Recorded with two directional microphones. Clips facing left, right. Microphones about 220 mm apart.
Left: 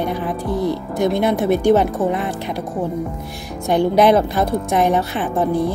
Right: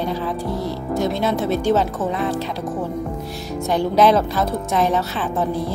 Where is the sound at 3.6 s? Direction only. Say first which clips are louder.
Left 2 dB; 15° left (ahead or behind).